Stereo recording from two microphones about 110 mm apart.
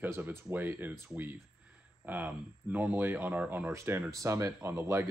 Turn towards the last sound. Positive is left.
turn(degrees=-25)  # may be behind; listen again after turning